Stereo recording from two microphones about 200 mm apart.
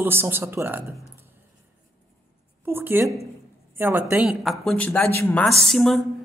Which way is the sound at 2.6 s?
10° right (ahead or behind).